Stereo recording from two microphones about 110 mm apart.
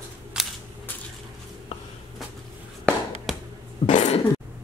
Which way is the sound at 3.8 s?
90° left.